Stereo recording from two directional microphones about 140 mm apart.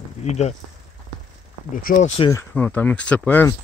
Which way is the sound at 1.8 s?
70° left (ahead or behind).